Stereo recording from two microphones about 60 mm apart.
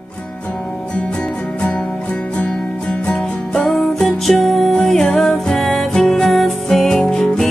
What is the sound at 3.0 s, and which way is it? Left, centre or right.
Music, centre.